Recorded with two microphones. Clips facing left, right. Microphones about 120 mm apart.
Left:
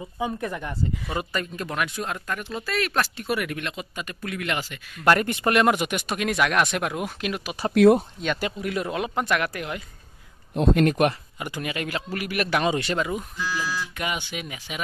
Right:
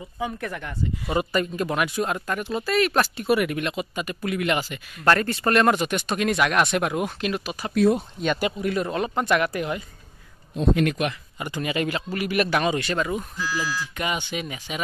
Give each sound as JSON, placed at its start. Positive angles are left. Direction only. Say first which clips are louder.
{"t": 0.2, "sound": "speech", "louder": "left 1 dB", "side_deg": 20}
{"t": 1.0, "sound": "speech", "louder": "right 5 dB", "side_deg": -10}
{"t": 5.0, "sound": "speech", "louder": "even", "side_deg": 15}
{"t": 7.7, "sound": "speech", "louder": "left 4 dB", "side_deg": 75}
{"t": 8.2, "sound": "speech", "louder": "right 3 dB", "side_deg": -10}
{"t": 8.5, "sound": "speech", "louder": "right 2 dB", "side_deg": 5}
{"t": 10.5, "sound": "speech", "louder": "left 2 dB", "side_deg": 65}
{"t": 10.9, "sound": "speech", "louder": "left 4 dB", "side_deg": 45}
{"t": 11.3, "sound": "speech", "louder": "right 4 dB", "side_deg": 5}
{"t": 12.6, "sound": "speech", "louder": "even", "side_deg": 20}
{"t": 13.4, "sound": "speech", "louder": "right 1 dB", "side_deg": 0}